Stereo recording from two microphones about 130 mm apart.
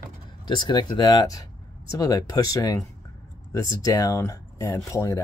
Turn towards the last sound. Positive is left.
turn(degrees=25)  # may be behind; listen again after turning